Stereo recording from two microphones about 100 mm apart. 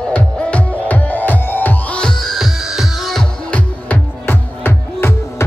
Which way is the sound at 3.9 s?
20° left (ahead or behind).